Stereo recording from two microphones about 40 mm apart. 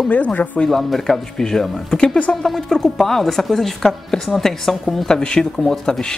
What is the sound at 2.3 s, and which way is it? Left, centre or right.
Speech, centre.